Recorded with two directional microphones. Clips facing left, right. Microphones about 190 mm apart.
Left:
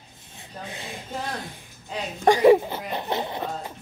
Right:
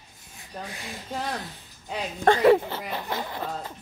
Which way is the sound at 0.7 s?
25° left (ahead or behind).